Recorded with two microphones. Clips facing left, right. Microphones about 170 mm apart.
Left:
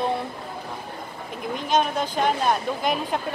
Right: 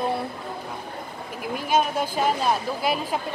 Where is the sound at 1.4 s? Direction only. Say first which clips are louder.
Even; 5° right (ahead or behind).